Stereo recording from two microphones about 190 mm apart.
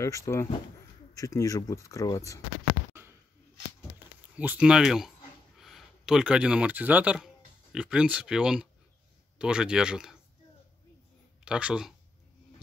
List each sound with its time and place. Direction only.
0.0 s speech: 15° left (ahead or behind)
4.4 s speech: 5° right (ahead or behind)
11.4 s speech: 5° right (ahead or behind)